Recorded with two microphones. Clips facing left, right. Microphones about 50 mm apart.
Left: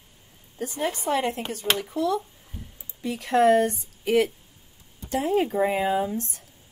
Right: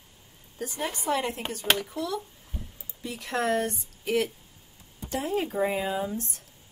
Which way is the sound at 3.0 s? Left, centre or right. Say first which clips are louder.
Left 9 dB; left.